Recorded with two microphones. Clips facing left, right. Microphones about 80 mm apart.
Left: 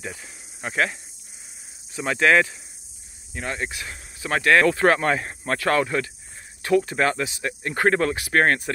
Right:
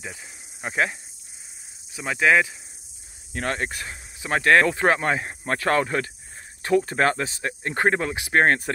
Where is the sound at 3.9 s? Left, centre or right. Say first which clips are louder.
Left 2 dB; right.